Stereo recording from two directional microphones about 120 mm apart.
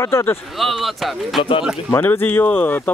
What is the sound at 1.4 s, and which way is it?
Speech, 45° left (ahead or behind).